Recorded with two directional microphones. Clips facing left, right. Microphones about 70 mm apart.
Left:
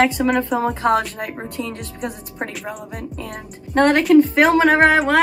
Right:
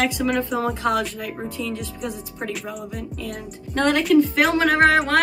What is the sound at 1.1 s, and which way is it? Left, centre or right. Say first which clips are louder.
Speech: left 2 dB; left.